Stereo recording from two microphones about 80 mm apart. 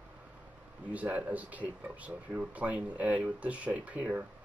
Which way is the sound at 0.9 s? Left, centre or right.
Centre.